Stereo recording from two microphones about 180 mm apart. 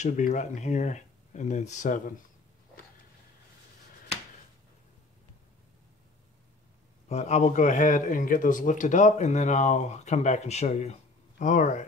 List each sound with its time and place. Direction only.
0.0 s speech: 45° left (ahead or behind)
7.1 s speech: 40° left (ahead or behind)